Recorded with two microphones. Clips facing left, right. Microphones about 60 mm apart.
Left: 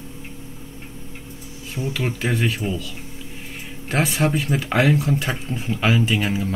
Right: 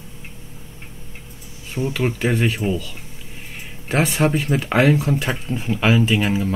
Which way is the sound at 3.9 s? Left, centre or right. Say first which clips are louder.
Right 2 dB; centre.